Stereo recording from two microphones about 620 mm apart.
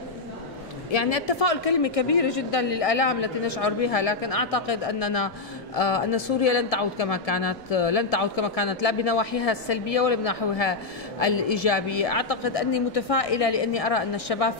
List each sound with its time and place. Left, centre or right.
0.9 s a woman's voice: left